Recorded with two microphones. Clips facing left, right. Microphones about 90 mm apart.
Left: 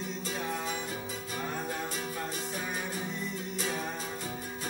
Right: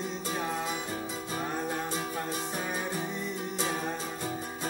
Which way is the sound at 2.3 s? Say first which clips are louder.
Right 3 dB; 25° right (ahead or behind).